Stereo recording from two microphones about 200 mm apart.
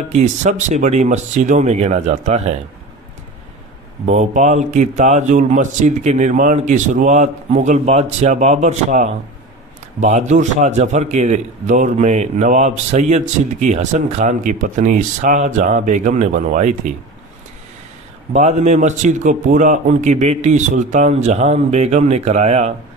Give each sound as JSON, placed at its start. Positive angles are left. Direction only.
{"t": 0.1, "sound": "a man's voice", "side_deg": -35}
{"t": 4.0, "sound": "a man's voice", "side_deg": -35}
{"t": 18.3, "sound": "a man's voice", "side_deg": -35}